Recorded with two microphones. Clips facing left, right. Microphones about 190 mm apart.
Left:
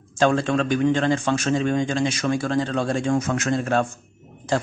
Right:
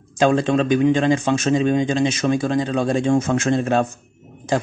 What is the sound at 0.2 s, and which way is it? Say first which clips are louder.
A man's voice: right 3 dB; 20° right (ahead or behind).